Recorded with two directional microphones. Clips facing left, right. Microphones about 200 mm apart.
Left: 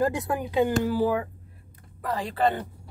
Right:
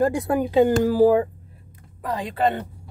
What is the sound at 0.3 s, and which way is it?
Speech, 35° right (ahead or behind).